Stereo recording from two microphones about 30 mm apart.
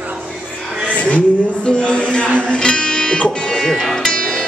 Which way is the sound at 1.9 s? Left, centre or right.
Left.